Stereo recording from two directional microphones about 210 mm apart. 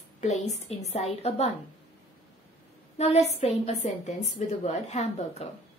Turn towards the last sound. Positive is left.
turn(degrees=30)  # may be behind; listen again after turning